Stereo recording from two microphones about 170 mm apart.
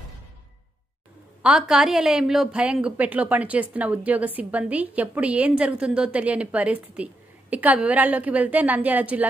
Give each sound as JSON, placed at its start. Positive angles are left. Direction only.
{"t": 1.4, "sound": "a woman's voice", "side_deg": -5}